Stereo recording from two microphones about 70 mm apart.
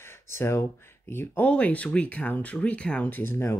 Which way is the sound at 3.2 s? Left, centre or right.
Left.